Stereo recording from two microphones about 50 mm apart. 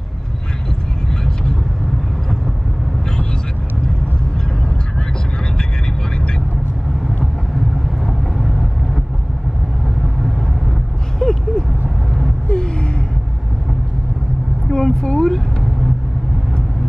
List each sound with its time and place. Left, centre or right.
1.2 s vehicle: centre
8.4 s vehicle: centre
11.1 s a sound: centre
14.7 s vehicle: centre